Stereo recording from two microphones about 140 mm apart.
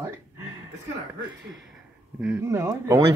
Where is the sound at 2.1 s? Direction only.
10° right (ahead or behind).